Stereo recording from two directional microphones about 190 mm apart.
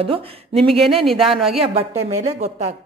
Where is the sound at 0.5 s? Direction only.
Centre (ahead or behind).